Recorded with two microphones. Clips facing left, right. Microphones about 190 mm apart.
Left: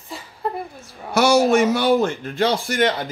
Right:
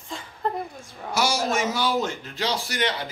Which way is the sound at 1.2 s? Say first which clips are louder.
Left 9 dB; 60° left (ahead or behind).